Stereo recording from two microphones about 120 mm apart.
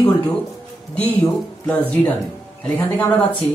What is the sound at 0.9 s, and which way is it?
Speech, 10° left (ahead or behind).